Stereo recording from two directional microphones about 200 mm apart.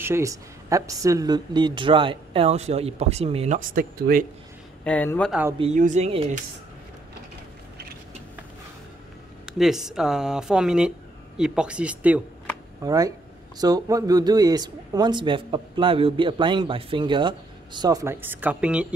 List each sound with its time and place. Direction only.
0.0 s speech: 15° right (ahead or behind); by 3.5 s 30° right (ahead or behind)
3.5 s speech: 45° right (ahead or behind)
4.8 s speech: 10° left (ahead or behind)
5.6 s speech: 35° right (ahead or behind)
9.5 s speech: centre (ahead or behind)
12.8 s speech: 20° right (ahead or behind)